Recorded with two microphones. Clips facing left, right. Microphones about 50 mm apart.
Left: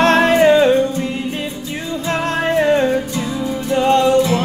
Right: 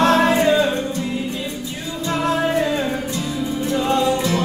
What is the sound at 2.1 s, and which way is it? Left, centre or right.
Music, left.